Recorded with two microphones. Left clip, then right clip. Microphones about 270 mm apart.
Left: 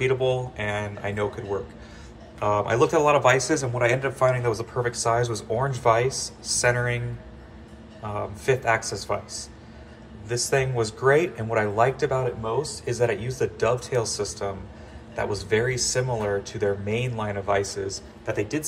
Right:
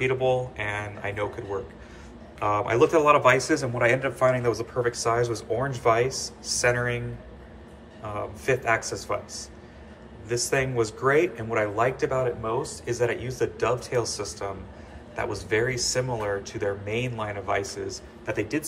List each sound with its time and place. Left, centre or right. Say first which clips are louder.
0.0 s speech: even; centre
8.0 s speech: left 2 dB; centre